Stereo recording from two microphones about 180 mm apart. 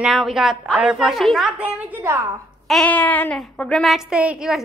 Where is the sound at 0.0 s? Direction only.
Centre (ahead or behind).